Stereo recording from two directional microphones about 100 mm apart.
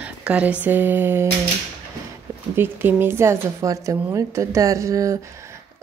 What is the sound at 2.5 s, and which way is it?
A woman's voice, 20° right (ahead or behind).